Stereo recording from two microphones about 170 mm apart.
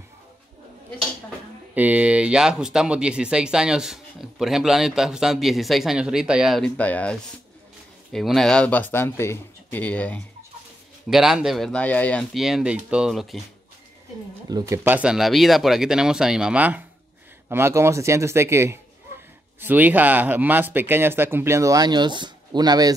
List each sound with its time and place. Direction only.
1.8 s speech: 10° right (ahead or behind); by 10.2 s 10° left (ahead or behind)
11.1 s speech: centre (ahead or behind)
14.5 s speech: 15° right (ahead or behind)